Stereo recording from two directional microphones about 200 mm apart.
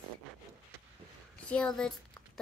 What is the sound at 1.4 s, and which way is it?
Speech, 5° left (ahead or behind).